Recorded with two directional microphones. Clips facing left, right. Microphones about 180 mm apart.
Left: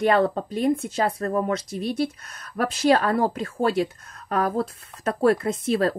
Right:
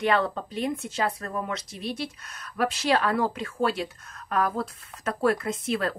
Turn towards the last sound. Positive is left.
turn(degrees=40)  # may be behind; listen again after turning